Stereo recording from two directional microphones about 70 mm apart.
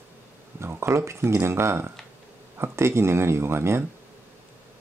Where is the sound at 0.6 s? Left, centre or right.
Right.